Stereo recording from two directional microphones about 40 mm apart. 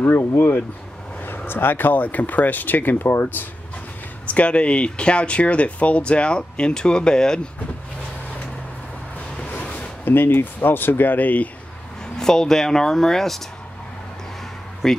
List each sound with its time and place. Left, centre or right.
0.0 s speech: left
4.3 s speech: left
9.5 s a sound: left
10.0 s speech: left
12.2 s speech: centre
14.8 s speech: centre